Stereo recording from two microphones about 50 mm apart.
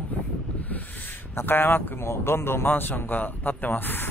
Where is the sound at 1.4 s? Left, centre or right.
Left.